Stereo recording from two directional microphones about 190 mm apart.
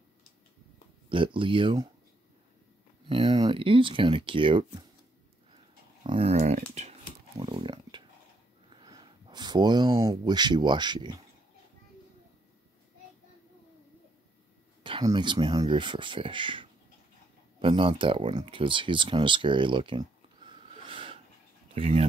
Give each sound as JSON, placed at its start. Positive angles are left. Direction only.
{"t": 1.0, "sound": "speech", "side_deg": -25}
{"t": 3.1, "sound": "speech", "side_deg": -25}
{"t": 6.0, "sound": "speech", "side_deg": -30}
{"t": 14.8, "sound": "speech", "side_deg": -25}